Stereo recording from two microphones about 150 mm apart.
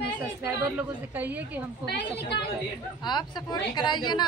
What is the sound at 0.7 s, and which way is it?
Speech, 10° right (ahead or behind).